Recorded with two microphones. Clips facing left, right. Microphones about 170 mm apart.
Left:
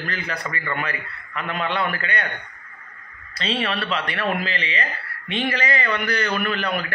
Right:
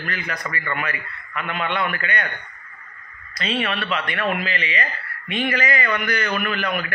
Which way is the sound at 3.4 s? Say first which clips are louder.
Even; 30° left (ahead or behind).